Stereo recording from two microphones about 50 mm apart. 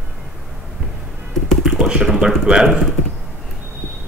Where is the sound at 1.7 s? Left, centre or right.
Centre.